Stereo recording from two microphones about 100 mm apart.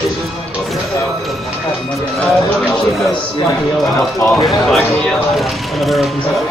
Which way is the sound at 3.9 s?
25° left (ahead or behind).